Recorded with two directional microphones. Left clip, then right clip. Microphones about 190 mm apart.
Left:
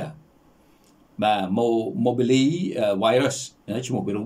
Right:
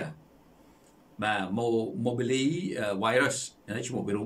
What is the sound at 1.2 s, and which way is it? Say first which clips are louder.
Speech: left 8 dB; 15° left (ahead or behind).